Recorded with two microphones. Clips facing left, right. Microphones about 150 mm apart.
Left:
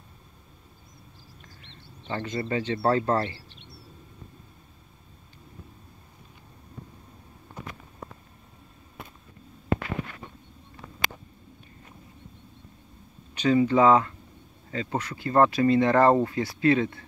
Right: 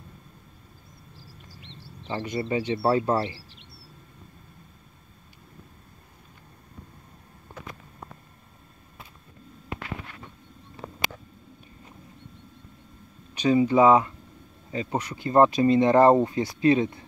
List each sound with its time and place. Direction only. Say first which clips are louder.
1.5 s frog: right 4 dB; 35° right (ahead or behind)
2.1 s speech: right 1 dB; 15° right (ahead or behind)
10.8 s a sound: right 7 dB; 65° right (ahead or behind)
13.3 s speech: right 1 dB; 15° right (ahead or behind)